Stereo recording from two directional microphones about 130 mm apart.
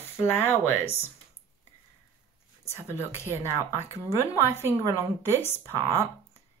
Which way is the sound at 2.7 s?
20° left (ahead or behind).